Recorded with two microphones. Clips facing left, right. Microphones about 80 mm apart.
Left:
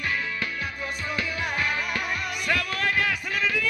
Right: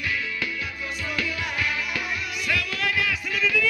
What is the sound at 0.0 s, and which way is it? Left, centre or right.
Music, left.